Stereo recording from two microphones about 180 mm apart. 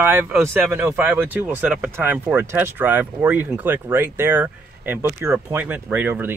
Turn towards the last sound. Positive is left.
turn(degrees=-10)  # may be behind; listen again after turning